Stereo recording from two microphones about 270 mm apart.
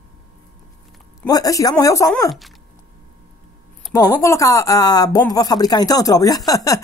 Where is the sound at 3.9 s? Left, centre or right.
Centre.